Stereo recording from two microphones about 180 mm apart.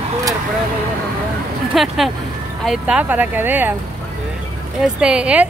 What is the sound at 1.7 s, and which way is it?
A woman's voice, centre (ahead or behind).